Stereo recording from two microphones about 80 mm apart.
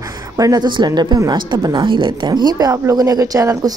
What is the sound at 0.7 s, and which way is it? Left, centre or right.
Speech, right.